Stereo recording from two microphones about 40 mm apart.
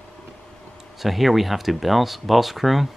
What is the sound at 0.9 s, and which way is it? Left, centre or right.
Speech, centre.